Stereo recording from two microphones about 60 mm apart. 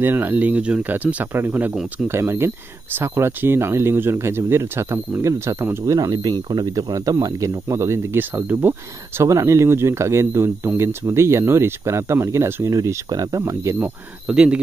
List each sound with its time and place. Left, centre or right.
0.0 s speech: right
2.0 s speech: right
5.9 s speech: right
6.6 s speech: right
7.6 s speech: right
8.2 s speech: right
9.2 s speech: right
12.7 s speech: right
14.2 s speech: centre